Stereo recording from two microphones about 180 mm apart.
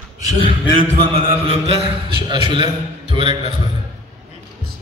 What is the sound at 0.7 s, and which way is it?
Music, 35° right (ahead or behind).